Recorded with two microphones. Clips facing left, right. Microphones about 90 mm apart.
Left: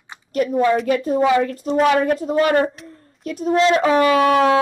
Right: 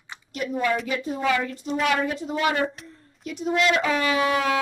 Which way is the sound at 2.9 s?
45° left (ahead or behind).